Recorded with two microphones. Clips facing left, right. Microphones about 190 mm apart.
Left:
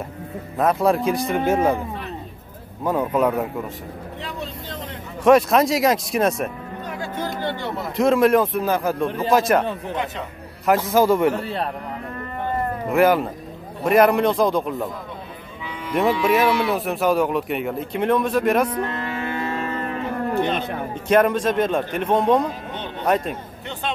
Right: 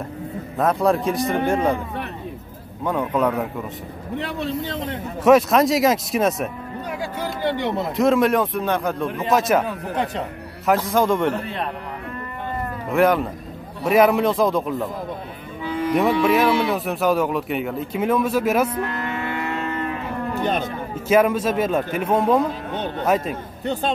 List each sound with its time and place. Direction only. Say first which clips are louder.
0.6 s speech: even; centre (ahead or behind)
2.8 s speech: left 1 dB; 5° left (ahead or behind)
4.2 s speech: right 4 dB; 65° right (ahead or behind)
5.2 s speech: even; centre (ahead or behind)
7.9 s speech: left 2 dB; centre (ahead or behind)
9.0 s speech: left 2 dB; 30° left (ahead or behind)
9.3 s speech: even; centre (ahead or behind)
10.9 s speech: left 5 dB; 5° left (ahead or behind)
11.3 s speech: left 1 dB; 35° left (ahead or behind)
12.9 s speech: even; centre (ahead or behind)
15.9 s speech: right 1 dB; centre (ahead or behind)
18.8 s cattle: even; 30° left (ahead or behind)
20.9 s speech: even; 5° right (ahead or behind)
23.6 s speech: right 11 dB; 40° right (ahead or behind)